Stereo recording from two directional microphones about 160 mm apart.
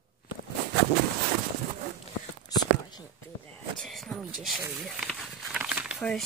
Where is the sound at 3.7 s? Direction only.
Centre (ahead or behind).